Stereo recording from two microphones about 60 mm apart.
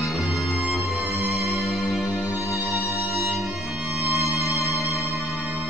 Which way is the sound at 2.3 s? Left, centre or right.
Left.